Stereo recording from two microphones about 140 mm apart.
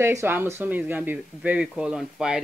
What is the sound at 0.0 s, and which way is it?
Speech, 20° right (ahead or behind).